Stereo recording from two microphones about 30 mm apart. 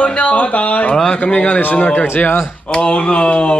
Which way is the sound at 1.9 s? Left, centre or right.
Left.